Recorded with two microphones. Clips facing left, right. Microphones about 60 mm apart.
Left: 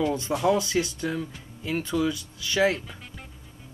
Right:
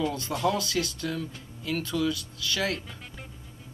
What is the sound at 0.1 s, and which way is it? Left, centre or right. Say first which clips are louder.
Speech: left 4 dB; centre.